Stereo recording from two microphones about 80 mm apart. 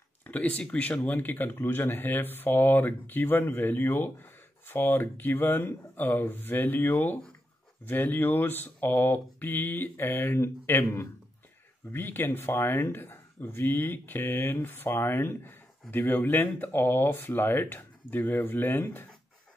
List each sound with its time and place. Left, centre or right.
0.2 s speech: centre